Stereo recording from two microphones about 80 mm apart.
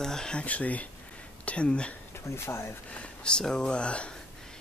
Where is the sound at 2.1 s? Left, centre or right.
Left.